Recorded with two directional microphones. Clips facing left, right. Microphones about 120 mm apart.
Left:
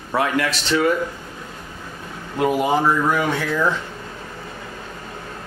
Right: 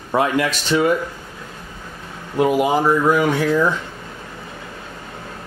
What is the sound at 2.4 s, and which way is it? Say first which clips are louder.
Speech: right 2 dB; 10° right (ahead or behind).